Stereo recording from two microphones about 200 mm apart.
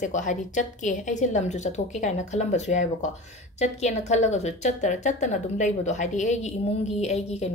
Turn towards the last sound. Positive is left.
turn(degrees=30)  # may be behind; listen again after turning